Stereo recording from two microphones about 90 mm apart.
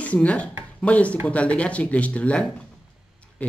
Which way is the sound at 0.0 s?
15° left (ahead or behind).